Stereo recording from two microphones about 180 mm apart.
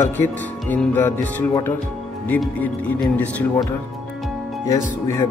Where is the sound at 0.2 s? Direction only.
10° left (ahead or behind).